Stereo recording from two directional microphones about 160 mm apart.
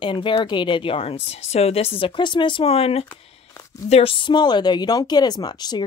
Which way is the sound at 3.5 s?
20° left (ahead or behind).